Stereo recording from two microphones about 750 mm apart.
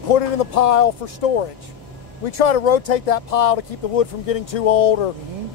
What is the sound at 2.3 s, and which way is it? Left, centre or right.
Speech, left.